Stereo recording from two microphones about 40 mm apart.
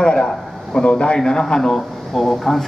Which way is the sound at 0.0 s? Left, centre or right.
Centre.